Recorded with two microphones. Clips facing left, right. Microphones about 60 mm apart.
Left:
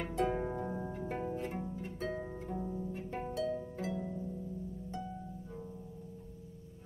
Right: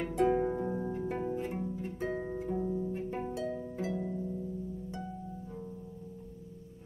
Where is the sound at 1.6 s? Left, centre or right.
Centre.